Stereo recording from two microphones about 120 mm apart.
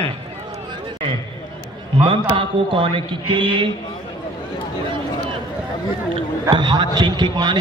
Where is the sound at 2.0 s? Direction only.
45° right (ahead or behind).